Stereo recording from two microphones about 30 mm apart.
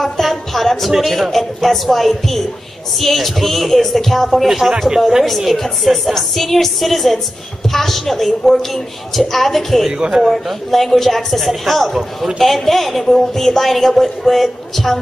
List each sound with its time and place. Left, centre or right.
0.0 s music: centre
1.0 s a woman's voice: centre
4.5 s speech: centre
5.9 s a woman's voice: centre
9.9 s speech: right
10.3 s a woman's voice: centre